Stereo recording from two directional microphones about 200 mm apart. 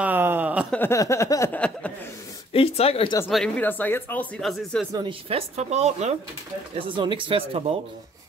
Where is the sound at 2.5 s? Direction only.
30° left (ahead or behind).